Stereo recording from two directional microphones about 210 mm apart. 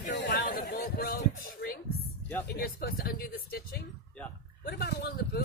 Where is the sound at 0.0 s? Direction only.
50° left (ahead or behind).